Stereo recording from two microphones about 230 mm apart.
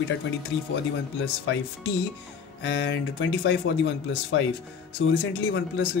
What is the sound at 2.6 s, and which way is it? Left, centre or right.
Speech, left.